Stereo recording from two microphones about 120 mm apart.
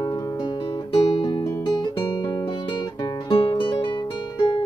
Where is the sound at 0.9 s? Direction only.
40° left (ahead or behind).